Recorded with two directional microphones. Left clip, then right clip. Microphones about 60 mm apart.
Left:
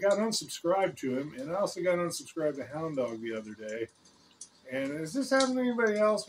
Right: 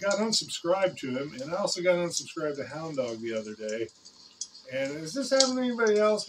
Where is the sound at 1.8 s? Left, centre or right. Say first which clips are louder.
Right 4 dB; left.